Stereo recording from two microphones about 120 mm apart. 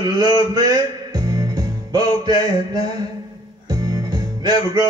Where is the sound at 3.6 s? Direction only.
35° right (ahead or behind).